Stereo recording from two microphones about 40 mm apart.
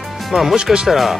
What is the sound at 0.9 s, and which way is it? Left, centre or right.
Speech, centre.